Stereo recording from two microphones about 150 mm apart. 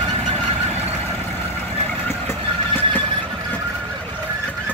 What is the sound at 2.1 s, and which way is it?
Vehicle, 15° left (ahead or behind).